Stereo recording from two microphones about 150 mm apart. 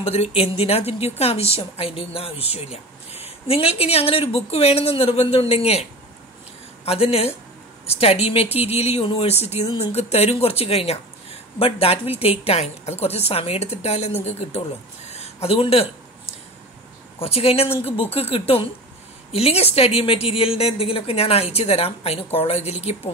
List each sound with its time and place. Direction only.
0.0 s a woman's voice: 40° left (ahead or behind)
15.0 s a sound: 45° left (ahead or behind)
17.2 s speech: 40° left (ahead or behind)